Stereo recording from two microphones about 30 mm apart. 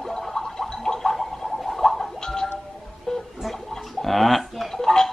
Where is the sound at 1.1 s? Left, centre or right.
Centre.